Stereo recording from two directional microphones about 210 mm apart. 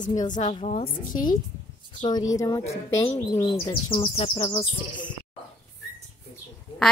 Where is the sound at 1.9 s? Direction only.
20° left (ahead or behind).